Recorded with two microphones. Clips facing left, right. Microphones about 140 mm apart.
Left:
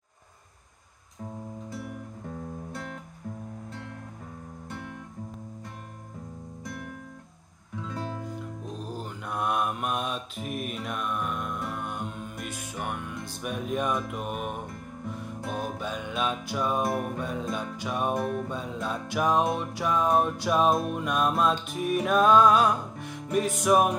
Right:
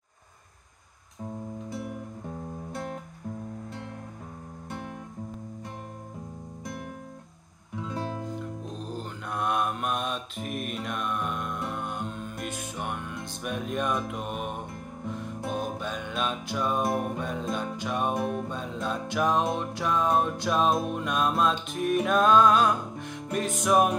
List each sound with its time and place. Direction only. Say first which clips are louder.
7.8 s music: right 2 dB; 20° right (ahead or behind)
8.8 s mantra: even; 10° left (ahead or behind)
11.7 s music: right 1 dB; 5° left (ahead or behind)
15.8 s music: left 1 dB; 5° left (ahead or behind)